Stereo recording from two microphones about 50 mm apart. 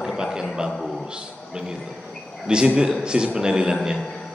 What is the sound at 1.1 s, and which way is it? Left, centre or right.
A man's voice, centre.